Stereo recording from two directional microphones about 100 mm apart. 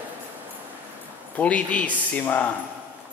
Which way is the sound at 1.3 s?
15° left (ahead or behind).